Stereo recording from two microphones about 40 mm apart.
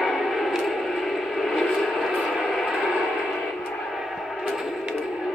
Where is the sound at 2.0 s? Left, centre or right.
Centre.